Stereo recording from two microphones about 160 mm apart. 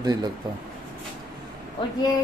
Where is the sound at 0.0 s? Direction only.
25° right (ahead or behind).